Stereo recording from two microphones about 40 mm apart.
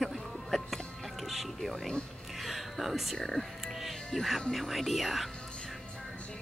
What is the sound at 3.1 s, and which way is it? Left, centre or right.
Speech, centre.